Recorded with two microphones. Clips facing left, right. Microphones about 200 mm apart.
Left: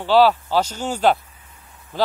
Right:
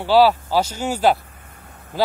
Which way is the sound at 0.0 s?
10° right (ahead or behind).